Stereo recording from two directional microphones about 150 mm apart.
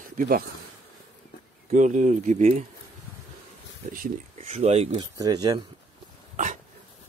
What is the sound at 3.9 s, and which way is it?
Speech, 60° right (ahead or behind).